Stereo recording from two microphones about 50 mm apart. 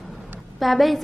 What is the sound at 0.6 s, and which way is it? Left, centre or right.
Speech, centre.